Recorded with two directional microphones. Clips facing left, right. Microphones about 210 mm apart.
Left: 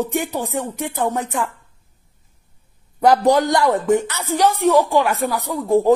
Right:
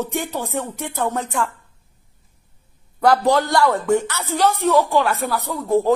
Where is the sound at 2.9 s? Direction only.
15° left (ahead or behind).